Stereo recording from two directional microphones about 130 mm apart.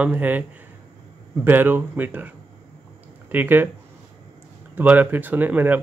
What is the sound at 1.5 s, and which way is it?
Speech, 15° right (ahead or behind).